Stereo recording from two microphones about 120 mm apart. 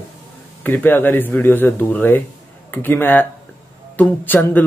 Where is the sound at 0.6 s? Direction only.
15° left (ahead or behind).